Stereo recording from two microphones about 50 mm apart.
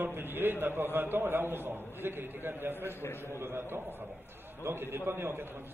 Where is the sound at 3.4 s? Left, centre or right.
Right.